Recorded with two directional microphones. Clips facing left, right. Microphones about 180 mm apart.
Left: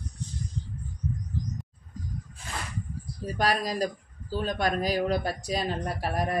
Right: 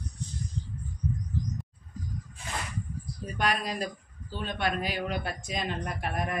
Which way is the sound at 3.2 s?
35° left (ahead or behind).